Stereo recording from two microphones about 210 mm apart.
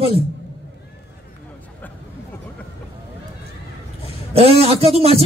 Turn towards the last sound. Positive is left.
turn(degrees=-30)  # may be behind; listen again after turning